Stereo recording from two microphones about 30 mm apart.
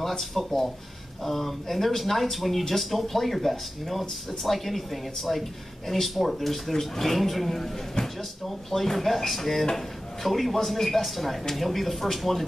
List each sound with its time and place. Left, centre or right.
0.2 s speech: centre